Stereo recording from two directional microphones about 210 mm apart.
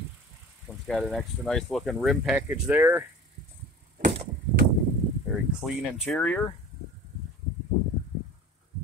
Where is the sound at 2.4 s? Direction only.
15° right (ahead or behind).